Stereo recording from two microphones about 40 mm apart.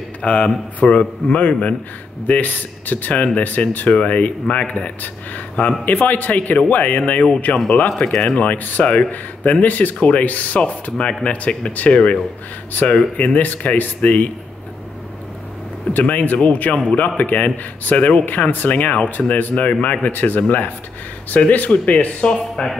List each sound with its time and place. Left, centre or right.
0.2 s a man's voice: left
8.0 s speech: centre
8.4 s speech: left
10.6 s speech: left
15.9 s a man's voice: left
22.6 s speech: left